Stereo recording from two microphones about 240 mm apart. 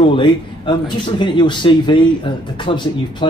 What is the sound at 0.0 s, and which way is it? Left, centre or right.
Speech, left.